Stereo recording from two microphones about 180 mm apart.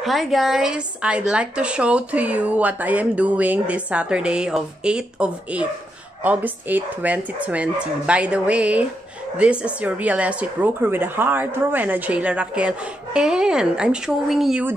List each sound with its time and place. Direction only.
0.0 s a woman's voice: centre (ahead or behind)